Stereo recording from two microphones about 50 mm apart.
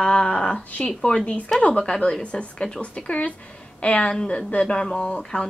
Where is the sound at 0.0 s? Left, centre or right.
Centre.